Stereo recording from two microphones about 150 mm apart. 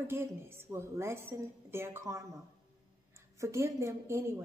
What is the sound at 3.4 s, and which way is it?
A woman's voice, 20° right (ahead or behind).